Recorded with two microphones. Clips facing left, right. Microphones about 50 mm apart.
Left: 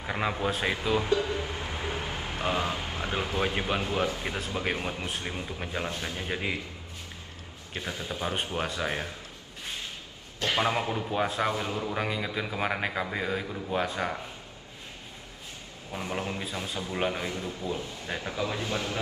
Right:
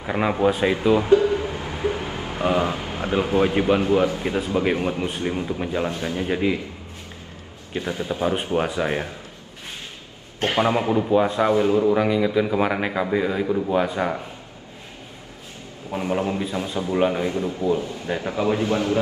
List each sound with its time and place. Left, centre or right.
0.0 s a man's voice: centre
0.7 s music: right
3.8 s a man's voice: right
7.7 s a man's voice: right
10.4 s a man's voice: right
11.1 s speech: centre
11.4 s a man's voice: right
11.9 s a man's voice: centre
13.5 s a man's voice: right
13.7 s a man's voice: centre
15.9 s a man's voice: right
16.4 s a man's voice: centre
17.3 s a man's voice: right